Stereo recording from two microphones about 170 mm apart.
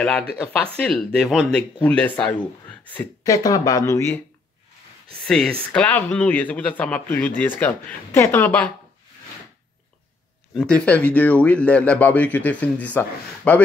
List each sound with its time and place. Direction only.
0.0 s speech: 5° left (ahead or behind)
3.3 s speech: 20° left (ahead or behind)
5.2 s speech: 5° left (ahead or behind)
10.5 s speech: 5° left (ahead or behind)